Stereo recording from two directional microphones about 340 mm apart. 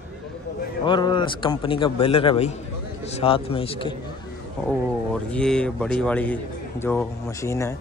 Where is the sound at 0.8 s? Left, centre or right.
Centre.